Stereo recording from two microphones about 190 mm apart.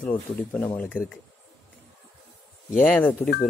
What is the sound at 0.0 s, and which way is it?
Speech, 5° left (ahead or behind).